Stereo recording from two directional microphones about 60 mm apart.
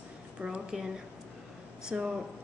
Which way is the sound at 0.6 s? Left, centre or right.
Centre.